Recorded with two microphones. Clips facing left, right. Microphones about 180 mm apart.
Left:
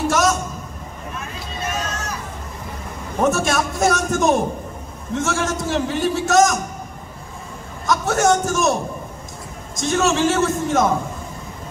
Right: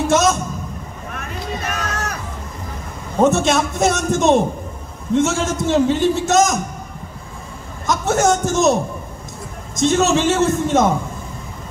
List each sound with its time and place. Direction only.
0.1 s a man's voice: 25° right (ahead or behind)
1.1 s vehicle: 65° right (ahead or behind)
3.2 s a man's voice: 20° right (ahead or behind)
7.8 s a man's voice: 20° right (ahead or behind)
9.8 s a man's voice: 20° right (ahead or behind)